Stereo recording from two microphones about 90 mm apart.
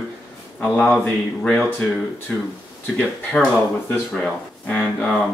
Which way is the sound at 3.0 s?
10° left (ahead or behind).